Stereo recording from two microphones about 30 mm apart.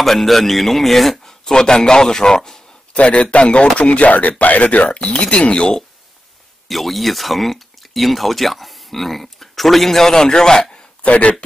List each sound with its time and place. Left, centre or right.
0.0 s a man's voice: centre
1.2 s a man's voice: left
2.9 s speech: left
4.1 s speech: left
4.8 s speech: left
6.7 s speech: centre; by 10.7 s left
11.0 s speech: left